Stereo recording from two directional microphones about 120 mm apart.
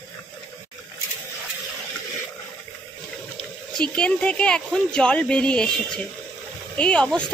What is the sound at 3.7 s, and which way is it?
A woman's voice, 10° left (ahead or behind).